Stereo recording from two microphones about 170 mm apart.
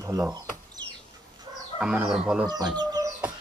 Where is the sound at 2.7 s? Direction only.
20° right (ahead or behind).